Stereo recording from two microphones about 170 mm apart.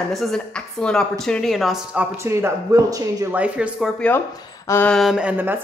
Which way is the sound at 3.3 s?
10° right (ahead or behind).